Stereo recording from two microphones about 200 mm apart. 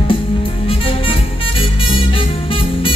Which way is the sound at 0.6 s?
25° left (ahead or behind).